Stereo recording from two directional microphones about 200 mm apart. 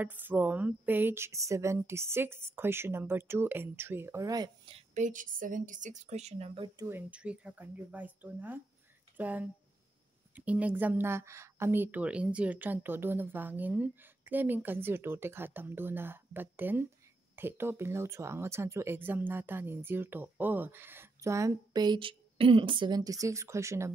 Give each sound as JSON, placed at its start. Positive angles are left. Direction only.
{"t": 0.0, "sound": "speech", "side_deg": -10}
{"t": 6.9, "sound": "speech", "side_deg": -10}